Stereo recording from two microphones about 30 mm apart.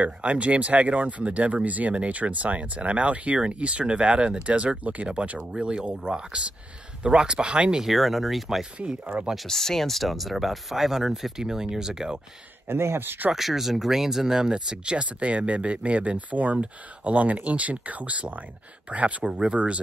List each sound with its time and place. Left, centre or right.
0.0 s speech: right
0.5 s speech: right
5.6 s speech: right
7.8 s speech: centre
8.7 s speech: right
9.5 s speech: centre
11.3 s speech: right
13.3 s speech: centre; by 15.0 s right
15.0 s speech: right
19.2 s speech: right
19.5 s speech: right